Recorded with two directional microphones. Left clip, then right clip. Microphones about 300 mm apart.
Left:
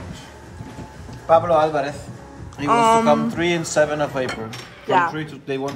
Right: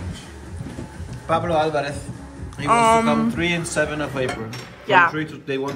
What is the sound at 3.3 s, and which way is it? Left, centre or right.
Speech, left.